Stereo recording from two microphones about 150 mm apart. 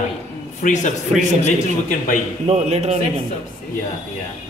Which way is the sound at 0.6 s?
55° left (ahead or behind).